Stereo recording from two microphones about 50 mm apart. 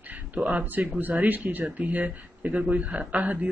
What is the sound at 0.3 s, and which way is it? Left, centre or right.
Speech, right.